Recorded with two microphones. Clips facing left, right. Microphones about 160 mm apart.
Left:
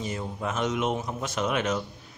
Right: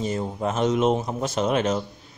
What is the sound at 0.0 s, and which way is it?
Speech, 35° right (ahead or behind).